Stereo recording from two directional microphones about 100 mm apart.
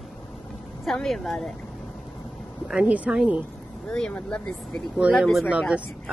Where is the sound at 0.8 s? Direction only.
5° left (ahead or behind).